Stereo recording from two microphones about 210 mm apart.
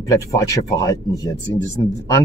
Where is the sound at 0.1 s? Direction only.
15° left (ahead or behind).